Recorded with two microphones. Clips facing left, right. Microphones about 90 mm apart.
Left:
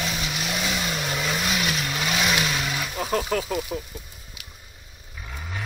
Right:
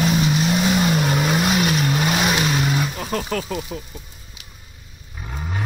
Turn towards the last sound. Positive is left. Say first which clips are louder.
# right 5 dB
turn(degrees=-30)  # may be behind; listen again after turning